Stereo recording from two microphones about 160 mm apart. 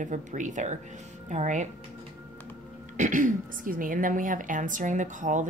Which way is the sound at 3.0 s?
50° right (ahead or behind).